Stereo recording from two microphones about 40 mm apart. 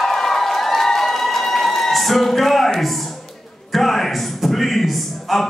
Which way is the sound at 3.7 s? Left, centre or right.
Centre.